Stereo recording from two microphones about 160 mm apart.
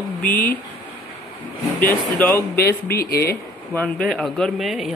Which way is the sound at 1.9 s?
10° left (ahead or behind).